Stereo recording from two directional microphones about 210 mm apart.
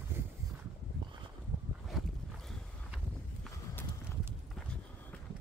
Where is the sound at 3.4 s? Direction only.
10° left (ahead or behind).